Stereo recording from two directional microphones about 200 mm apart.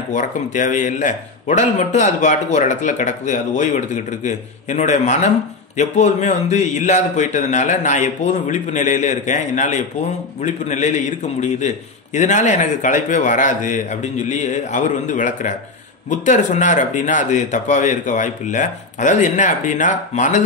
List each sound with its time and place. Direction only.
0.1 s a man's voice: 40° left (ahead or behind)